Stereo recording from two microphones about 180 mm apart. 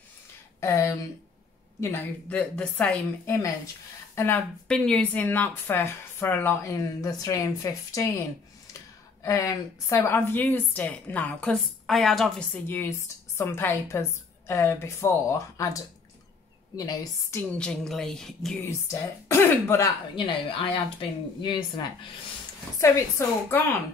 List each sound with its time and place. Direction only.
0.6 s speech: 15° left (ahead or behind)
9.2 s a woman's voice: 20° left (ahead or behind); by 18.6 s centre (ahead or behind)
18.6 s speech: 15° left (ahead or behind)
20.2 s speech: 30° left (ahead or behind)
22.8 s speech: 15° left (ahead or behind)